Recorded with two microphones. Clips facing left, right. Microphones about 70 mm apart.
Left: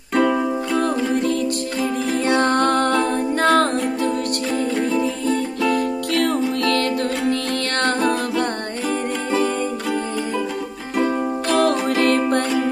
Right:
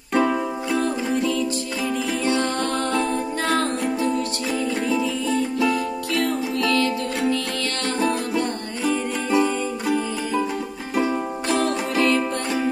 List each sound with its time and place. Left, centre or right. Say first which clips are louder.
0.1 s music: left 3 dB; centre
0.7 s music: left 2 dB; left
5.7 s music: left 3 dB; left
11.4 s music: left 5 dB; left